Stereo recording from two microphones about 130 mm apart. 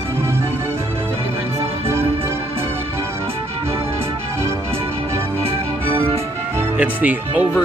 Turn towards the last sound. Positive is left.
turn(degrees=-10)  # may be behind; listen again after turning